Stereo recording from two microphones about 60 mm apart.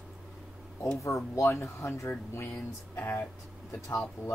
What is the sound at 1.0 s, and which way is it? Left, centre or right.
Speech, left.